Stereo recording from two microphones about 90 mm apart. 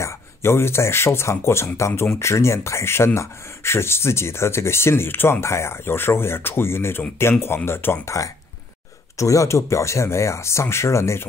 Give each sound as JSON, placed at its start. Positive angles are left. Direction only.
{"t": 0.0, "sound": "speech", "side_deg": 30}